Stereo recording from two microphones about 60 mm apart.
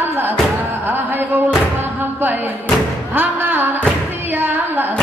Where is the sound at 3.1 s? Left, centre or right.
Right.